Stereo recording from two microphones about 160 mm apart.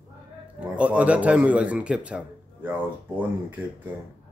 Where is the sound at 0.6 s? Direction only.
10° right (ahead or behind).